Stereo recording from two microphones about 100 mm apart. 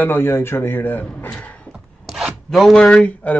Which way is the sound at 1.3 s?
10° left (ahead or behind).